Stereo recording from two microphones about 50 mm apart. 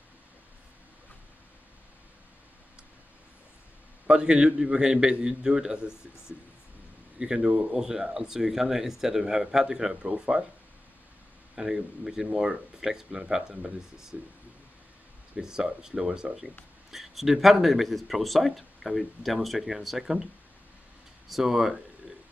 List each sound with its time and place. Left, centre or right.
4.1 s a man's voice: centre
7.2 s speech: centre
11.5 s speech: centre
14.1 s speech: right
15.3 s speech: centre
16.9 s speech: centre
21.3 s speech: centre